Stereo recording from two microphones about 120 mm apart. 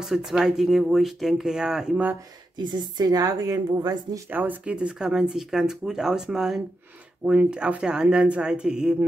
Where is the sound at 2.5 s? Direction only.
35° right (ahead or behind).